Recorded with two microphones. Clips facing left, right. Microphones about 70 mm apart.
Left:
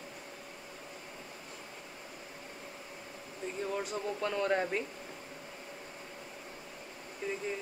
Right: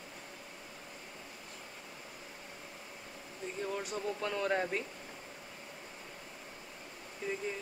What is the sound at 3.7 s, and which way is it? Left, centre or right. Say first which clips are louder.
Speech: left 1 dB; centre.